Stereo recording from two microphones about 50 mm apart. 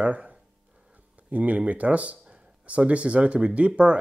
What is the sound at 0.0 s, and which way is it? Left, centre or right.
Speech, right.